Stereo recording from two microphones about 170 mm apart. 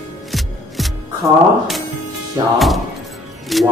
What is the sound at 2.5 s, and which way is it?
Music, centre (ahead or behind).